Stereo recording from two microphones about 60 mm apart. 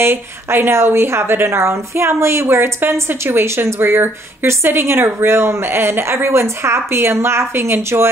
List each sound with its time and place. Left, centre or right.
0.0 s a woman's voice: right